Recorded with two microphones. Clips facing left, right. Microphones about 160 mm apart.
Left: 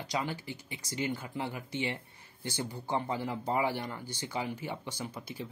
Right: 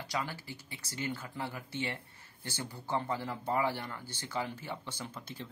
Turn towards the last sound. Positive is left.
turn(degrees=10)  # may be behind; listen again after turning